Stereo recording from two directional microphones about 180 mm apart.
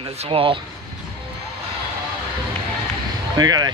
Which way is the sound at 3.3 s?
20° right (ahead or behind).